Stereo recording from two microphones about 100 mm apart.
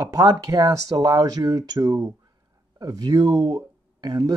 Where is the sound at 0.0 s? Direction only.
35° right (ahead or behind).